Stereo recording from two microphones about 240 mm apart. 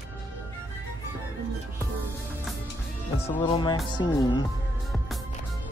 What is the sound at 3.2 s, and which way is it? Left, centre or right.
Speech, left.